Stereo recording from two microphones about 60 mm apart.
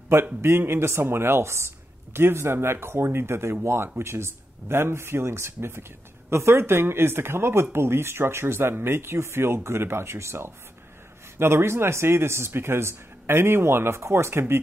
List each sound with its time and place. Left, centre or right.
0.4 s speech: right